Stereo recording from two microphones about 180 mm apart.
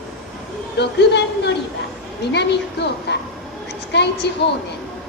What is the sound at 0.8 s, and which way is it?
A woman's voice, 70° left (ahead or behind).